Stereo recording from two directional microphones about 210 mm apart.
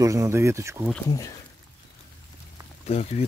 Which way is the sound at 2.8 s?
30° left (ahead or behind).